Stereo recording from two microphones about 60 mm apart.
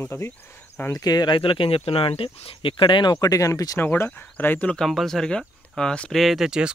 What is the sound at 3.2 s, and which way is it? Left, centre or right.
Speech, left.